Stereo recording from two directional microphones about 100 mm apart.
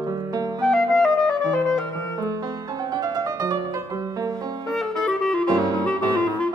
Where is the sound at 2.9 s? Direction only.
40° right (ahead or behind).